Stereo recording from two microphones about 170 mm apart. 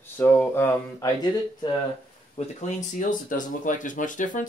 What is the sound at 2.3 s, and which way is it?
Speech, 45° left (ahead or behind).